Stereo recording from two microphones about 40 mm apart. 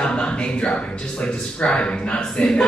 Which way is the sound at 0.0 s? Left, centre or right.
Left.